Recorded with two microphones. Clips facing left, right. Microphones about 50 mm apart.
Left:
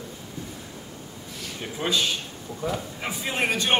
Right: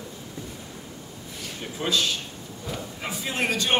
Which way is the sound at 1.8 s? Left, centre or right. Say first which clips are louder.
Even; centre.